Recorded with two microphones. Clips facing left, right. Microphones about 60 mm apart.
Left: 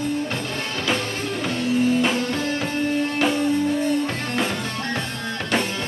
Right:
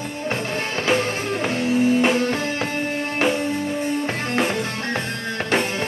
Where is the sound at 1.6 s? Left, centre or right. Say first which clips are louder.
Right 1 dB; right.